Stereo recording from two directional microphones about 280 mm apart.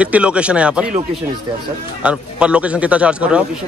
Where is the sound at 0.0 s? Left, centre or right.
Centre.